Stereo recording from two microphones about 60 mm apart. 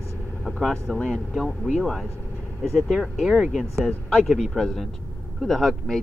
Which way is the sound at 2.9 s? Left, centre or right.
Centre.